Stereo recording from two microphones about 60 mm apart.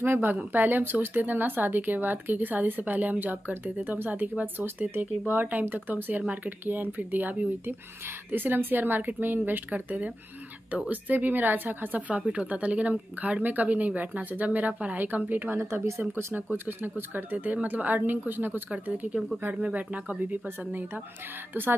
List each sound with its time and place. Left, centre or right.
0.0 s a woman's voice: right
16.3 s a woman's voice: right